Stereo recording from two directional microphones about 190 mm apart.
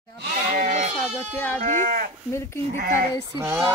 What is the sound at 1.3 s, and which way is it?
Speech, 10° left (ahead or behind).